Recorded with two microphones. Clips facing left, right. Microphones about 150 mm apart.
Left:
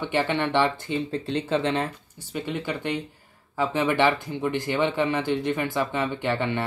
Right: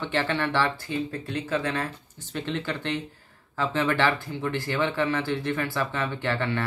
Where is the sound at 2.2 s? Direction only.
10° left (ahead or behind).